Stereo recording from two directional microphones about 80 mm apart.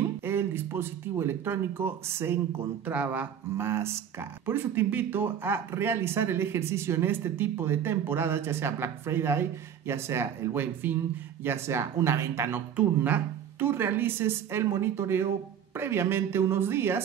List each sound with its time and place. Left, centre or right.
0.2 s speech: right
2.9 s a woman's voice: centre
3.5 s speech: right
12.7 s a woman's voice: right